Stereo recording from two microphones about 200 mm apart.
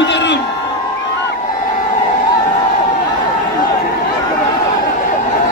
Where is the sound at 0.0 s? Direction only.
60° left (ahead or behind).